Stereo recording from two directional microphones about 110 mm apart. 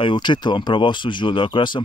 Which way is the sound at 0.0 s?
45° left (ahead or behind).